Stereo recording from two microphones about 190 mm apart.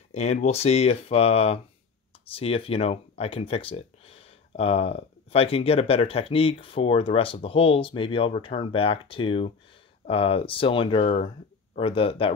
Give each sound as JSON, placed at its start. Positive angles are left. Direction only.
{"t": 0.1, "sound": "speech", "side_deg": 35}